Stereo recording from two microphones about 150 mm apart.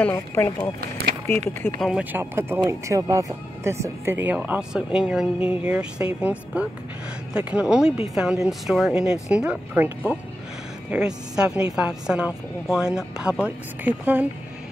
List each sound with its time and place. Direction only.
0.0 s speech: 15° left (ahead or behind)
0.7 s a sound: 90° right
1.8 s a woman's voice: centre (ahead or behind)
2.1 s a woman's voice: 15° right (ahead or behind)